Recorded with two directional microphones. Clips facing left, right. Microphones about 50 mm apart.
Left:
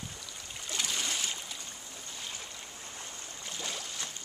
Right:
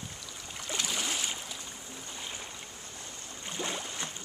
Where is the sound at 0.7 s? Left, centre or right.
Centre.